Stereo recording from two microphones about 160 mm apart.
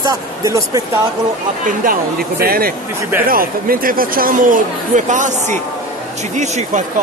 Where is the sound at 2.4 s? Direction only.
70° right (ahead or behind).